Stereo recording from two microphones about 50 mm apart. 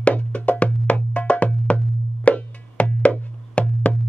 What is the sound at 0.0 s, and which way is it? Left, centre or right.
Music, left.